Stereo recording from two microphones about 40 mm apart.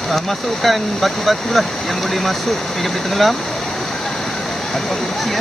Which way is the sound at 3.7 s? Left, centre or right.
Centre.